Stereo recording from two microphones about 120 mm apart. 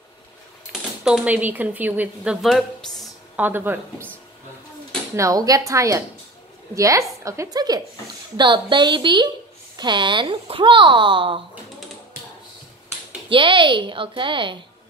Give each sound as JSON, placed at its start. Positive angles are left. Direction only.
{"t": 1.0, "sound": "a woman's voice", "side_deg": -10}
{"t": 2.4, "sound": "a woman's voice", "side_deg": 0}
{"t": 3.3, "sound": "a woman's voice", "side_deg": -15}
{"t": 5.1, "sound": "a woman's voice", "side_deg": -25}
{"t": 13.3, "sound": "speech", "side_deg": -45}